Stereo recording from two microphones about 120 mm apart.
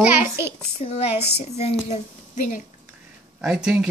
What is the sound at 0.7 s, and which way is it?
Speech, 65° left (ahead or behind).